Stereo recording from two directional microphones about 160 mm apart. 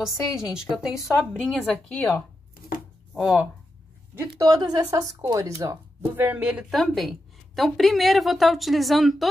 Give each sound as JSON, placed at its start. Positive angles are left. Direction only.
{"t": 0.0, "sound": "a woman's voice", "side_deg": -5}
{"t": 4.4, "sound": "a woman's voice", "side_deg": -25}